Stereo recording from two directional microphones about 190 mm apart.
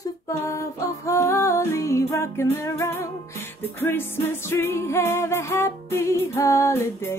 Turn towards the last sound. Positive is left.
turn(degrees=15)  # may be behind; listen again after turning